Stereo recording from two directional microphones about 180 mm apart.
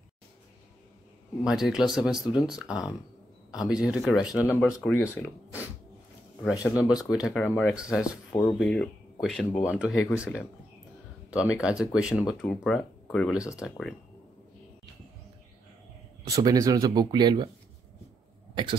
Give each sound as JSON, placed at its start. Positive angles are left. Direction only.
{"t": 1.4, "sound": "speech", "side_deg": -5}
{"t": 4.4, "sound": "speech", "side_deg": 10}
{"t": 6.5, "sound": "speech", "side_deg": 15}
{"t": 7.0, "sound": "speech", "side_deg": -5}
{"t": 7.7, "sound": "speech", "side_deg": -5}
{"t": 8.3, "sound": "speech", "side_deg": 15}
{"t": 8.5, "sound": "speech", "side_deg": 5}
{"t": 16.3, "sound": "speech", "side_deg": -20}